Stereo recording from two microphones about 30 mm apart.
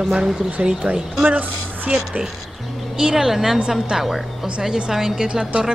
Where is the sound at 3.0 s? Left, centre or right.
Right.